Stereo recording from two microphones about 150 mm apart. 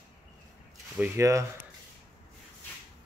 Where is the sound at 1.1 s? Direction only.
20° right (ahead or behind).